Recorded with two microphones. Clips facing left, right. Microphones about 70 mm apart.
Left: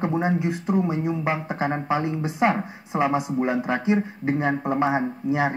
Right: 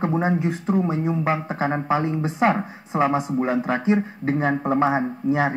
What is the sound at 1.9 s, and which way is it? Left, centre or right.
Speech, right.